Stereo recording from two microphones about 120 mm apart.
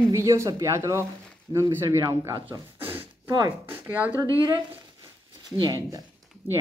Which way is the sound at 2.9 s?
20° right (ahead or behind).